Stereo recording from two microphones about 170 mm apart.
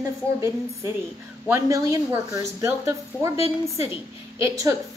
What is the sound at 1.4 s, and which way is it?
A woman's voice, 15° right (ahead or behind).